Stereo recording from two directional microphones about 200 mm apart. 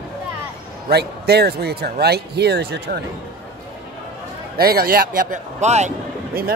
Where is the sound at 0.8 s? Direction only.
50° right (ahead or behind).